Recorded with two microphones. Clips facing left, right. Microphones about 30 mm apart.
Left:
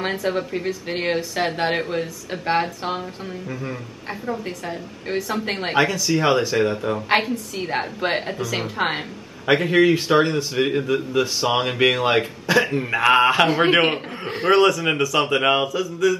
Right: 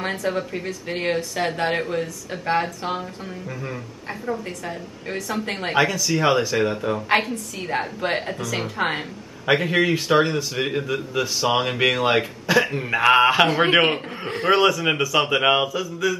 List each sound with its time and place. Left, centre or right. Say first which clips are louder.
0.0 s speech: left 1 dB; centre
4.1 s a man's voice: even; centre